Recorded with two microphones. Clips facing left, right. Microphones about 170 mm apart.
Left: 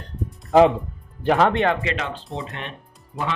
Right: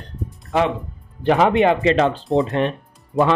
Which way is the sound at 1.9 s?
30° right (ahead or behind).